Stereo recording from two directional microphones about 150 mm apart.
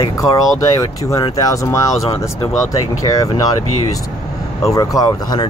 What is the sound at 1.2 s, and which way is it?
Speech, 20° left (ahead or behind).